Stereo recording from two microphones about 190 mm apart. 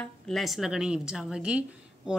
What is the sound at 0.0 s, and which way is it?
Speech, centre (ahead or behind).